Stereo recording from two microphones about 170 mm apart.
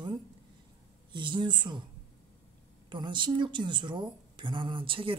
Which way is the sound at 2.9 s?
25° right (ahead or behind).